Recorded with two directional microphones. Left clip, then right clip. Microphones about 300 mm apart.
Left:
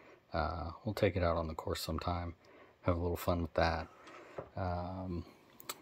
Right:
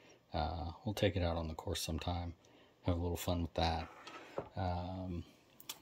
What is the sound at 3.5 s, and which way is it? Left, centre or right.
Speech, left.